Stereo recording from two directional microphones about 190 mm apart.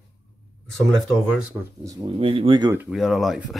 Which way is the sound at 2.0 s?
30° right (ahead or behind).